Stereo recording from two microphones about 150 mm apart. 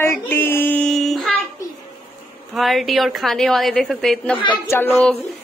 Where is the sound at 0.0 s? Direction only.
15° left (ahead or behind).